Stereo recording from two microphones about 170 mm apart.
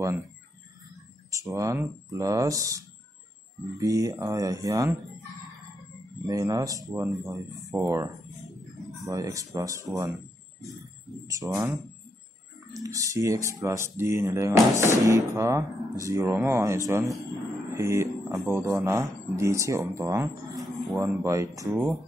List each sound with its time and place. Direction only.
1.3 s speech: 20° right (ahead or behind)
3.8 s speech: 20° right (ahead or behind)
6.2 s speech: 20° right (ahead or behind)
11.2 s speech: 20° right (ahead or behind)
12.7 s speech: 20° right (ahead or behind)